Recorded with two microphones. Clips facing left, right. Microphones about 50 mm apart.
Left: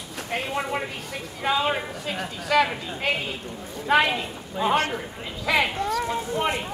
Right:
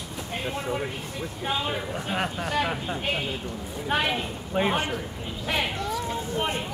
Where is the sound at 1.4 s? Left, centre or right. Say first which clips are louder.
Left 6 dB; left.